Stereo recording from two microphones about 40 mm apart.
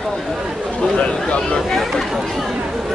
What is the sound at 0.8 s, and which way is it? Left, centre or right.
Speech, left.